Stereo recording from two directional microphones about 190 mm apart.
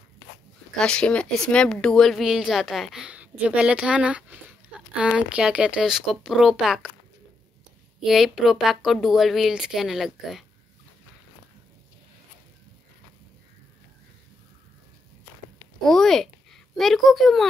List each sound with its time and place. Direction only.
0.7 s speech: 5° left (ahead or behind)
8.0 s speech: centre (ahead or behind)
15.8 s speech: centre (ahead or behind)